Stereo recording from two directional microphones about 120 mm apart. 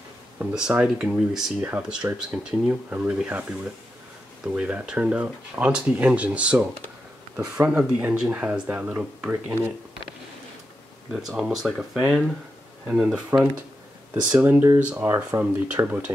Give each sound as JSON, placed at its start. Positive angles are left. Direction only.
{"t": 0.4, "sound": "speech", "side_deg": -10}
{"t": 4.6, "sound": "speech", "side_deg": -10}
{"t": 11.1, "sound": "speech", "side_deg": -5}